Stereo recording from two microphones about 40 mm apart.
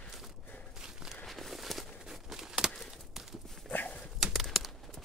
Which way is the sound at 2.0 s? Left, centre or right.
Centre.